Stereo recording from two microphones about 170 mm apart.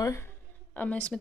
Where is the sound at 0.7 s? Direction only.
10° left (ahead or behind).